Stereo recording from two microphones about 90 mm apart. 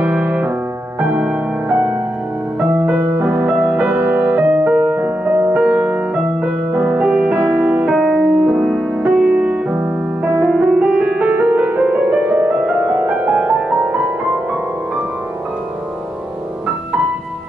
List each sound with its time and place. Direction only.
0.0 s piano: 15° right (ahead or behind)
1.0 s music: 15° right (ahead or behind)
7.9 s music: 5° right (ahead or behind)